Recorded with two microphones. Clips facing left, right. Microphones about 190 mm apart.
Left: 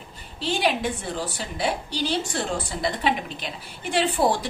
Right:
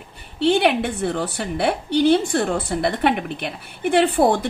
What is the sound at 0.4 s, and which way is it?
A woman's voice, 60° right (ahead or behind).